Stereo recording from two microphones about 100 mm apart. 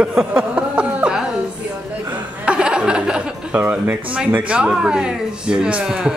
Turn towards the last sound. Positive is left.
turn(degrees=-5)  # may be behind; listen again after turning